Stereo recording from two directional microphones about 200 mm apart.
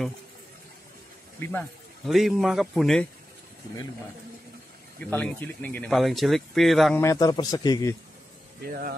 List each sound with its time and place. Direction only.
1.4 s speech: 5° left (ahead or behind)
5.0 s speech: 5° left (ahead or behind)
7.0 s a man's voice: 15° left (ahead or behind)
8.6 s speech: 50° right (ahead or behind)